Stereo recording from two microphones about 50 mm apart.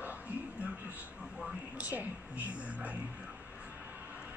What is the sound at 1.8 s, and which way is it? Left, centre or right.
A woman's voice, right.